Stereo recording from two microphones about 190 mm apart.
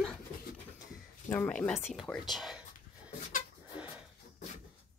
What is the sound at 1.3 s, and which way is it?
Speech, 10° left (ahead or behind).